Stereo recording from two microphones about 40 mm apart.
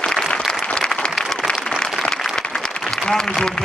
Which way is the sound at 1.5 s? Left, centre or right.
Left.